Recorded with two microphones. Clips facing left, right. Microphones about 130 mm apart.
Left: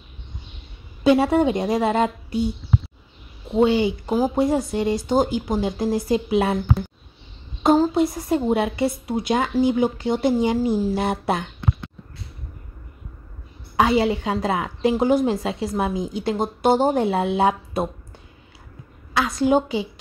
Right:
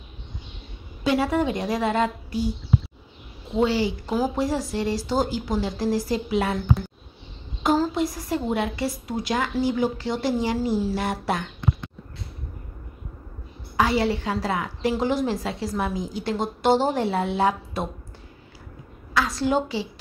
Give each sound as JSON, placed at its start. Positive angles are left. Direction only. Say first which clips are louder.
{"t": 1.0, "sound": "speech", "louder": "left 5 dB", "side_deg": 25}
{"t": 3.5, "sound": "speech", "louder": "left 4 dB", "side_deg": 20}
{"t": 7.6, "sound": "speech", "louder": "left 5 dB", "side_deg": 25}
{"t": 13.7, "sound": "speech", "louder": "left 3 dB", "side_deg": 20}
{"t": 19.1, "sound": "speech", "louder": "left 4 dB", "side_deg": 20}